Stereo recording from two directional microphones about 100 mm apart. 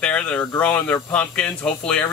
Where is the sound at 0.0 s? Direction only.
10° left (ahead or behind).